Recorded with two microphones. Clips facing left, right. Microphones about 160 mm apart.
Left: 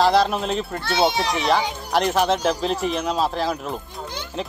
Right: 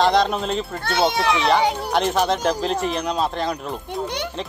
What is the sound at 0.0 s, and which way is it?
Speech, 5° left (ahead or behind).